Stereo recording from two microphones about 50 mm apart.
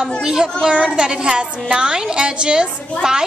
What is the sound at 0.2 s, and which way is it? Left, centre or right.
A child's voice, centre.